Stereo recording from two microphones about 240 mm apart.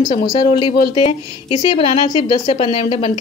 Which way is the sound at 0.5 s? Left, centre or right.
Left.